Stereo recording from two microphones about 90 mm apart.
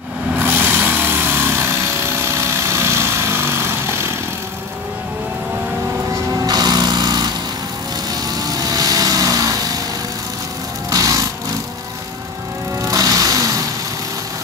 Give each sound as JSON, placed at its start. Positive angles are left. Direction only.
{"t": 0.4, "sound": "a sound", "side_deg": -20}
{"t": 6.3, "sound": "sewing machine", "side_deg": -45}
{"t": 8.1, "sound": "vehicle", "side_deg": -45}
{"t": 10.9, "sound": "music", "side_deg": -45}
{"t": 12.8, "sound": "music", "side_deg": -40}